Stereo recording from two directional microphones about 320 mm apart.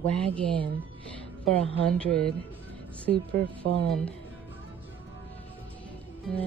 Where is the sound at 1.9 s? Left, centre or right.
Centre.